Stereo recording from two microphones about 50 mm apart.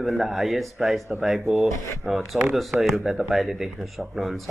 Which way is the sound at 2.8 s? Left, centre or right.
Centre.